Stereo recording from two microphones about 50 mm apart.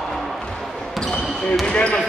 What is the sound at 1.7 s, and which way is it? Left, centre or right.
Basketball bounce, left.